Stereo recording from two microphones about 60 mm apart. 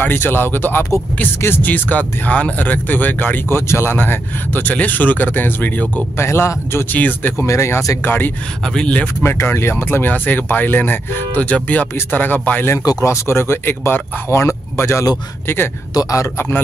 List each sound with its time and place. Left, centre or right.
0.0 s speech: left
6.1 s speech: left
6.9 s speech: left
7.3 s speech: left
8.0 s speech: left
8.6 s speech: centre
9.2 s speech: left
13.0 s speech: left
14.3 s speech: left
15.4 s speech: left
15.9 s speech: left
16.3 s speech: left